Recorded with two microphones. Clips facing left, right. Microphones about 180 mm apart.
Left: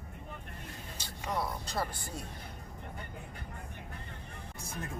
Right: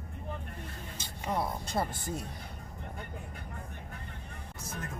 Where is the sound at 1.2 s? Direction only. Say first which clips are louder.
Right 2 dB; 25° right (ahead or behind).